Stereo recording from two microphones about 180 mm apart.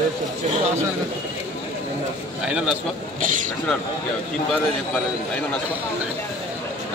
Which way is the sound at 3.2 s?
45° right (ahead or behind).